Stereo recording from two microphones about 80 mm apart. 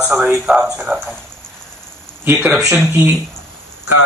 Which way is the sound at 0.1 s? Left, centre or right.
Centre.